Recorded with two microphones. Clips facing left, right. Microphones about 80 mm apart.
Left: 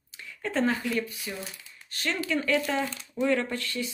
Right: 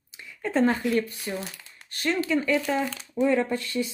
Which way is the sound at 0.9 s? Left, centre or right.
Right.